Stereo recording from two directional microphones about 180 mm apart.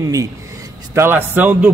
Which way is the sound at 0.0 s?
20° right (ahead or behind).